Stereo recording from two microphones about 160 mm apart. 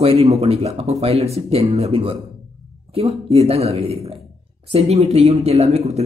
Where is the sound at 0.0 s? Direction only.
40° right (ahead or behind).